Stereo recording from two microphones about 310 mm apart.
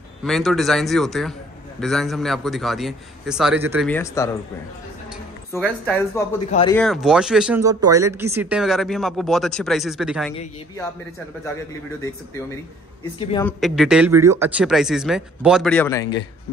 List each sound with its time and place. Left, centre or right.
0.2 s speech: centre
3.9 s a woman's voice: centre
5.5 s a woman's voice: centre
12.0 s a woman's voice: centre
13.5 s speech: centre